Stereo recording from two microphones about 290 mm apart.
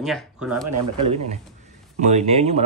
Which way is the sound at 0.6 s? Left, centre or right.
Right.